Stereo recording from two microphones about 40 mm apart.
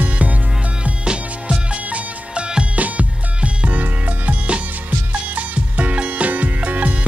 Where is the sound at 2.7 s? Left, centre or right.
Right.